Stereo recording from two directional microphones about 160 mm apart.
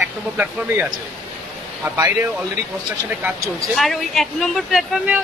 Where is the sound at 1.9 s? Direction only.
15° right (ahead or behind).